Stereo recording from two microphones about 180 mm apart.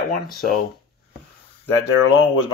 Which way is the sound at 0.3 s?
55° left (ahead or behind).